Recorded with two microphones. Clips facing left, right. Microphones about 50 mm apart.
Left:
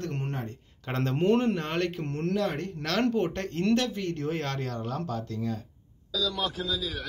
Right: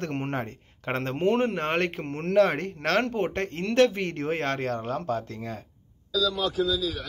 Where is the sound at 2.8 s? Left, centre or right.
Right.